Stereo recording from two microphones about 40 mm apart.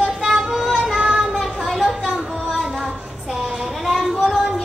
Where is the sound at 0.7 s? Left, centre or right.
Centre.